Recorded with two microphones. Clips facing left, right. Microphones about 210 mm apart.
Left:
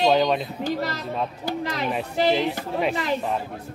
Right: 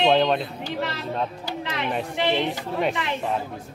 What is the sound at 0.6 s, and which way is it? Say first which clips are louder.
A man's voice: left 3 dB; 40° left (ahead or behind).